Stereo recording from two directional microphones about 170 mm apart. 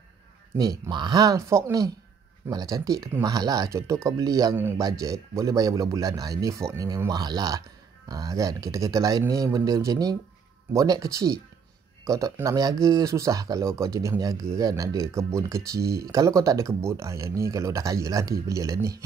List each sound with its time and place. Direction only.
0.6 s a man's voice: 20° right (ahead or behind)